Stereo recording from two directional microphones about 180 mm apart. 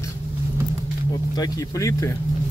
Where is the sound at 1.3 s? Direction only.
20° left (ahead or behind).